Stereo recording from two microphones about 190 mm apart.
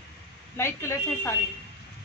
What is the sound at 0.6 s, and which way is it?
Speech, 15° left (ahead or behind).